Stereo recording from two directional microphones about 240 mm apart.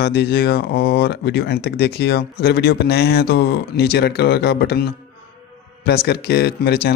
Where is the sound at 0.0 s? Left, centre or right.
Left.